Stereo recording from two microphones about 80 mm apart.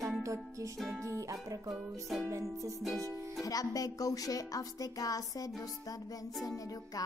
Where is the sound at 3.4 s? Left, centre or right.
Left.